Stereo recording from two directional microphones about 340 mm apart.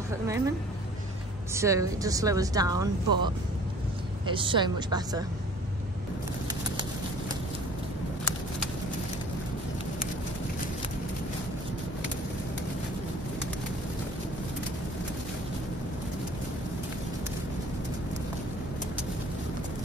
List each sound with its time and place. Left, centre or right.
1.5 s speech: centre
4.3 s speech: centre